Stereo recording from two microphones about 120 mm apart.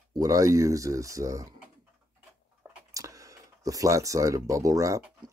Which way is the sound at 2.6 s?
25° right (ahead or behind).